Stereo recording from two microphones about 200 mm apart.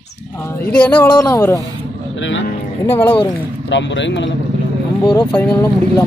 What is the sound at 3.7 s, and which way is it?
Speech, 65° left (ahead or behind).